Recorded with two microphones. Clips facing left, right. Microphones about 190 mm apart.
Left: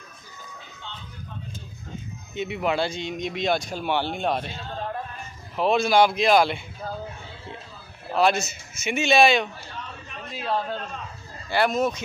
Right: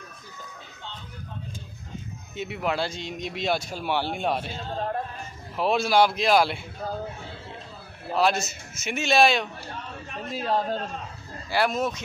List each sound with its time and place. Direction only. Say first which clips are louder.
2.3 s speech: left 3 dB; centre (ahead or behind)
5.6 s speech: left 2 dB; 5° right (ahead or behind)
8.1 s speech: left 2 dB; centre (ahead or behind)
9.7 s a sound: right 2 dB; 45° right (ahead or behind)
11.4 s speech: left 2 dB; 5° right (ahead or behind)